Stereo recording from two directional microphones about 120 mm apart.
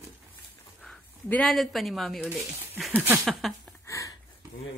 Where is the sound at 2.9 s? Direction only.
15° right (ahead or behind).